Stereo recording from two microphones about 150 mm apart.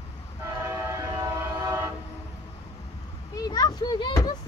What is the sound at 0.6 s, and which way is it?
Train, 15° right (ahead or behind).